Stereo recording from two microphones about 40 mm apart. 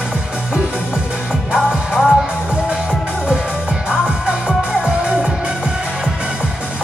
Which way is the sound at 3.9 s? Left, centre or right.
Centre.